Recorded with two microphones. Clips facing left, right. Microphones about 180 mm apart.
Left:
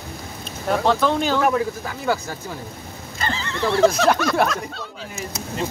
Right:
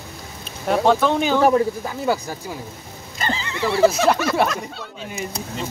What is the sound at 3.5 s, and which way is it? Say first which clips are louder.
Speech: even; 5° right (ahead or behind).